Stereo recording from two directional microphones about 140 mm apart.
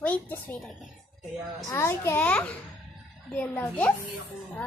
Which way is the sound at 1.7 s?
20° left (ahead or behind).